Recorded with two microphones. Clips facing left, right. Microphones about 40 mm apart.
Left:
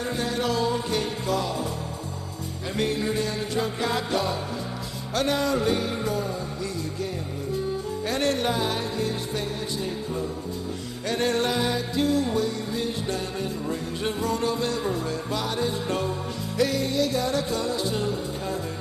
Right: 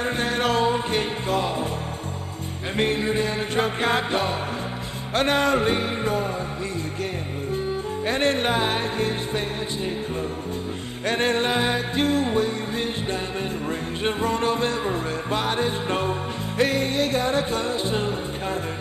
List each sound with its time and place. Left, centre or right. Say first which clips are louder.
0.0 s music: right 3 dB; right
2.8 s music: right 3 dB; right
3.5 s music: right 4 dB; right
7.5 s music: right 2 dB; right
11.1 s music: right 2 dB; right